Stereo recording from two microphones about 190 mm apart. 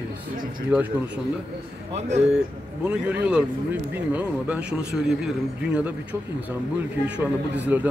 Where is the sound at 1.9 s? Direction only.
35° right (ahead or behind).